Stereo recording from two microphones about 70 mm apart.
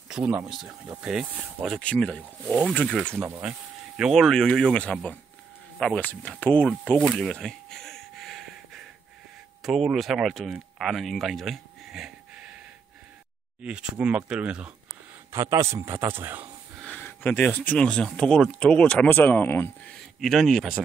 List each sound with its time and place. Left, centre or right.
1.8 s speech: centre
3.2 s speech: right
3.9 s speech: centre
5.9 s speech: left
7.0 s a sound: centre
9.9 s speech: centre
13.6 s speech: centre
15.3 s a man's voice: right
17.0 s speech: left
17.7 s speech: centre
19.0 s speech: left
20.2 s speech: centre